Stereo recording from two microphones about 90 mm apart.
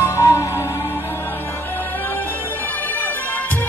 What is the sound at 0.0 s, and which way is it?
Music, 35° left (ahead or behind).